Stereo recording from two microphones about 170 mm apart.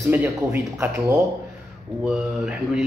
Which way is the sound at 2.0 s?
Centre (ahead or behind).